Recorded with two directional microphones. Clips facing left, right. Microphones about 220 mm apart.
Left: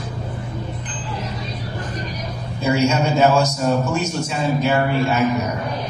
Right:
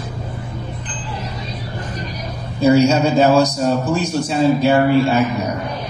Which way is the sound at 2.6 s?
35° right (ahead or behind).